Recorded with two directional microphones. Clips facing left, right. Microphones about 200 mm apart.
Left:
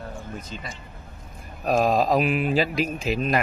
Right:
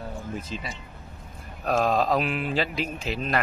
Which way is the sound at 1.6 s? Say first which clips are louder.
Left 2 dB; 10° left (ahead or behind).